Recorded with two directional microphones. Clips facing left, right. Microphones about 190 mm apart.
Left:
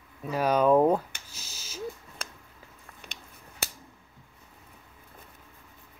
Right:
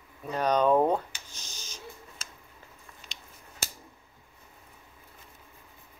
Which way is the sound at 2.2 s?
60° left (ahead or behind).